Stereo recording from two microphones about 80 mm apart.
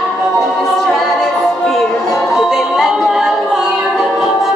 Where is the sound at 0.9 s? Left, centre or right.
Centre.